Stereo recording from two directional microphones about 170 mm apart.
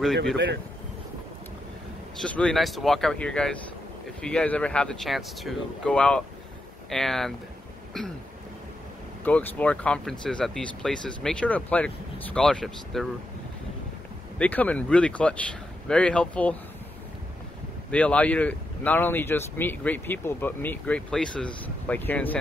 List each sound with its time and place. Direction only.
0.0 s speech: centre (ahead or behind)
2.1 s speech: 5° left (ahead or behind)
9.2 s speech: 10° left (ahead or behind)
14.4 s speech: 10° left (ahead or behind)
17.9 s speech: 5° left (ahead or behind)